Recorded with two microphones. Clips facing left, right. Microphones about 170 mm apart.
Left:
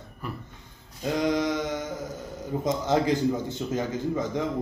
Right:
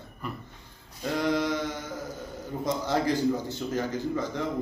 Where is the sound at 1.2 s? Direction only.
15° left (ahead or behind).